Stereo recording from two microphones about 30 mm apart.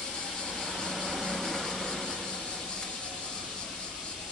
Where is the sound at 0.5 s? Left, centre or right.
Centre.